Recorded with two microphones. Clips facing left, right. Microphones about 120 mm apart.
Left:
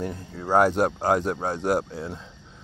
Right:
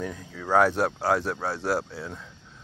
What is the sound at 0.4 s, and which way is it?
Speech, 15° left (ahead or behind).